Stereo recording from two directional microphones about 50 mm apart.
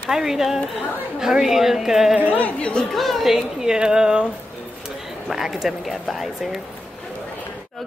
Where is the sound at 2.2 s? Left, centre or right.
Right.